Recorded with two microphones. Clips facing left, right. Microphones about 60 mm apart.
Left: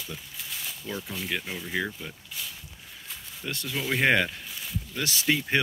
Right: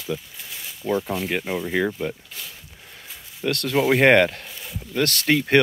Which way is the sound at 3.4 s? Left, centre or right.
Right.